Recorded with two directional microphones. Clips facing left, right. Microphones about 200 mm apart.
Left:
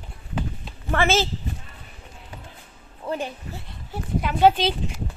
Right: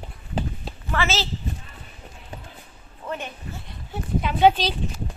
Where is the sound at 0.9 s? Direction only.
50° left (ahead or behind).